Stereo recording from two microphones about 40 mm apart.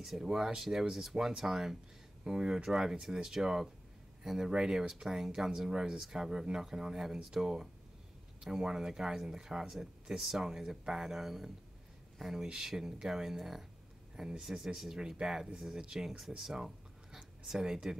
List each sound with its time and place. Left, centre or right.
0.0 s speech: centre
2.2 s speech: centre